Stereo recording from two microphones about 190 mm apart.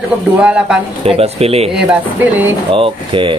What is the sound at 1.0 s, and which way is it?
Speech, 30° right (ahead or behind).